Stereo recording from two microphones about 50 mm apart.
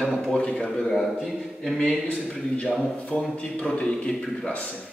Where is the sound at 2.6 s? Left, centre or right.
Left.